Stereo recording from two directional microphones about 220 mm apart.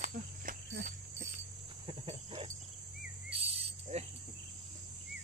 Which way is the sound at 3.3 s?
25° right (ahead or behind).